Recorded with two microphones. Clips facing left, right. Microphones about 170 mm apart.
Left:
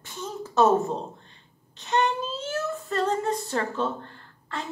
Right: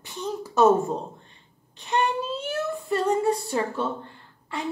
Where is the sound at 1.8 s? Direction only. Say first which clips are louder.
Even; 15° right (ahead or behind).